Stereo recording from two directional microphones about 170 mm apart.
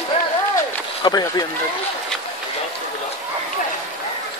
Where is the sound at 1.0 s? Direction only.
25° left (ahead or behind).